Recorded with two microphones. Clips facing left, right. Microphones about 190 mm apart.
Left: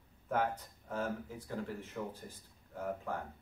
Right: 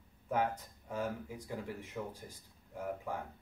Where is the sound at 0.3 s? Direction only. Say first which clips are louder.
Even; 10° right (ahead or behind).